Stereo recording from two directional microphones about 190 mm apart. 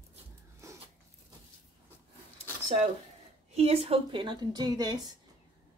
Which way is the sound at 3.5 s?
35° right (ahead or behind).